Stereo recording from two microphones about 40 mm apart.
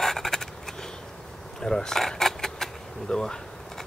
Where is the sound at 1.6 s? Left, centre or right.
Centre.